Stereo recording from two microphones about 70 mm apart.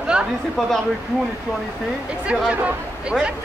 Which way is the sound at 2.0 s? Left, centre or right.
Centre.